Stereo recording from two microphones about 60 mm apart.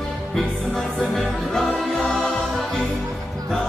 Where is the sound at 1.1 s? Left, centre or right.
Centre.